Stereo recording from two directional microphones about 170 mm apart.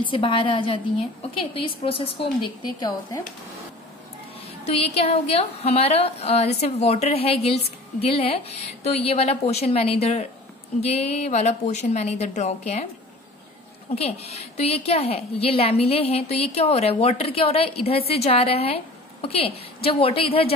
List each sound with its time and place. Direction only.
0.0 s a woman's voice: 30° left (ahead or behind)
4.6 s a woman's voice: 35° left (ahead or behind)
13.9 s a woman's voice: 35° left (ahead or behind)